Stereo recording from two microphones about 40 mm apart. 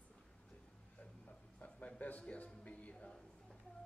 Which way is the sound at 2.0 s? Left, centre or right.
Left.